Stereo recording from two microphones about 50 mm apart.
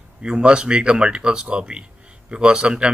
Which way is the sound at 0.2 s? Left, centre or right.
Centre.